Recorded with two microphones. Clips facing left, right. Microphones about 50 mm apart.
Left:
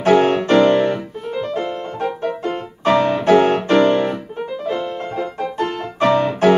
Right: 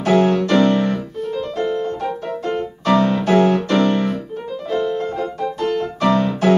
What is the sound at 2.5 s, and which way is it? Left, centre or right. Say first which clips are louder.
Music: even; left.